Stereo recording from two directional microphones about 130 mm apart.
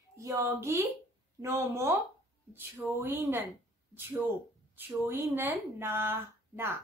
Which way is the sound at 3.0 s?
15° right (ahead or behind).